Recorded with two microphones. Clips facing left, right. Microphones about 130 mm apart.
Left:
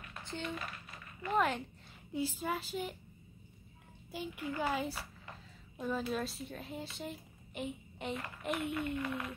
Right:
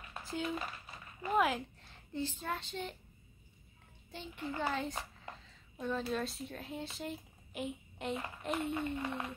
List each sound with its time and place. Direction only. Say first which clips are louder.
0.2 s speech: right 3 dB; 5° right (ahead or behind)
2.1 s child singing: left 2 dB; 10° left (ahead or behind)
4.1 s child singing: left 2 dB; 10° left (ahead or behind)
5.8 s speech: even; 5° left (ahead or behind)
8.6 s speech: even; 30° right (ahead or behind)